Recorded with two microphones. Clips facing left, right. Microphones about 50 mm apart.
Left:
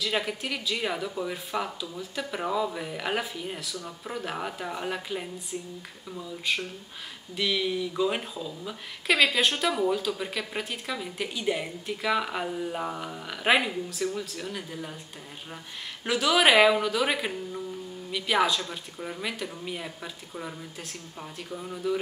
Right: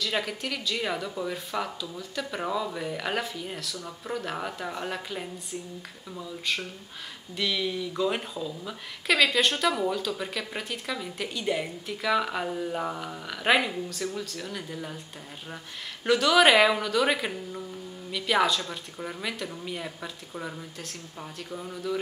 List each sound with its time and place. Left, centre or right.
0.0 s speech: centre
6.5 s speech: centre
16.1 s speech: centre